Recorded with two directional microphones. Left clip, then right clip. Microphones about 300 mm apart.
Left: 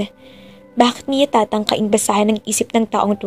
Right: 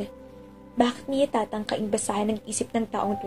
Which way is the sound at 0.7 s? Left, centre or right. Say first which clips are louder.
Left 9 dB; left.